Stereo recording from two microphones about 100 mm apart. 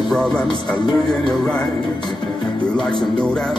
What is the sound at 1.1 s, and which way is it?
Speech, 5° left (ahead or behind).